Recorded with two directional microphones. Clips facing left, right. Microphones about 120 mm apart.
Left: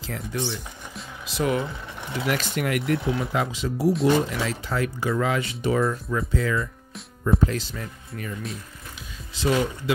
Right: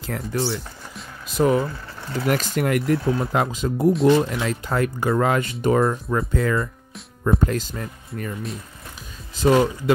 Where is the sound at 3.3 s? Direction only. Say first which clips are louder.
Right 4 dB; 45° right (ahead or behind).